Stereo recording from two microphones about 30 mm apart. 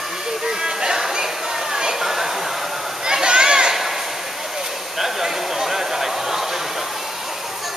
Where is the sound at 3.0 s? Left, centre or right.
Right.